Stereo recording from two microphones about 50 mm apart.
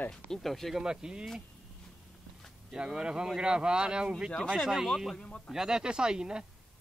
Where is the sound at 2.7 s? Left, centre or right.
Centre.